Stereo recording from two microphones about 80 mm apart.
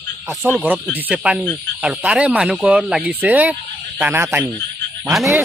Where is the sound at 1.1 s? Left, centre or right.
Centre.